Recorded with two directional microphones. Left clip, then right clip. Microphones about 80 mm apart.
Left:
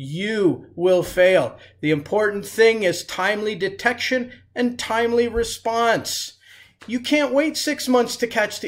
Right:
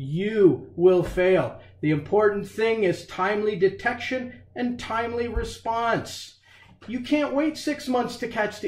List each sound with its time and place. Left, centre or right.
0.1 s speech: left